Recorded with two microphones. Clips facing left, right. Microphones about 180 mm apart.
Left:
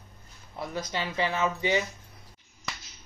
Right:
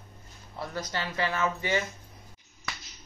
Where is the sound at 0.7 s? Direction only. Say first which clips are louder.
Left 2 dB; 15° left (ahead or behind).